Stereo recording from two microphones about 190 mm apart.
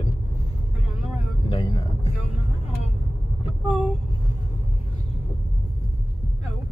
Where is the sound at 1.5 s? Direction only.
30° left (ahead or behind).